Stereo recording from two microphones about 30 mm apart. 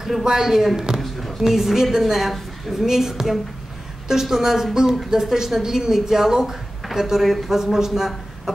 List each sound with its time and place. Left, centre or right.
0.2 s speech: right
0.5 s speech: centre
0.7 s speech: right
8.5 s a sound: centre